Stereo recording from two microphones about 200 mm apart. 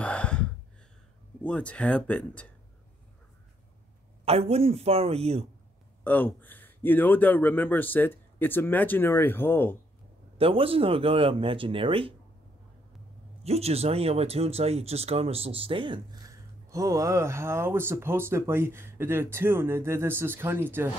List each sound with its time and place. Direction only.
0.0 s gasp: 5° left (ahead or behind)
1.4 s speech: 5° left (ahead or behind)
4.2 s a man's voice: 30° right (ahead or behind)
6.0 s speech: 10° left (ahead or behind)
10.3 s speech: 25° right (ahead or behind)
13.4 s speech: 30° right (ahead or behind); by 20.9 s 10° right (ahead or behind)